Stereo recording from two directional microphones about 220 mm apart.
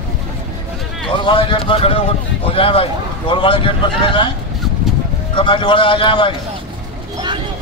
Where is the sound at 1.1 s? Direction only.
20° left (ahead or behind).